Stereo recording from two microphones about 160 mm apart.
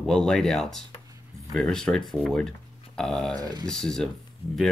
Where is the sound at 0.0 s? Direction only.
5° left (ahead or behind).